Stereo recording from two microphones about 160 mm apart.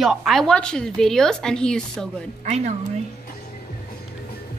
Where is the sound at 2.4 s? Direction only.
45° right (ahead or behind).